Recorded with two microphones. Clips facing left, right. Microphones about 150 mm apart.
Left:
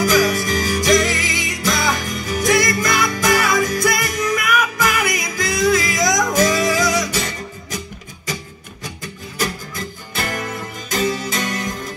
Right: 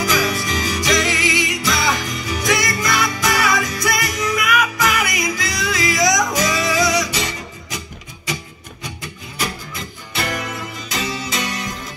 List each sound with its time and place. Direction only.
0.0 s music: 45° left (ahead or behind)
9.4 s music: 45° left (ahead or behind)